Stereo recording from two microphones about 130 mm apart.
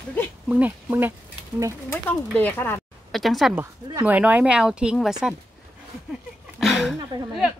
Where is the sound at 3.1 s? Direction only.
Centre (ahead or behind).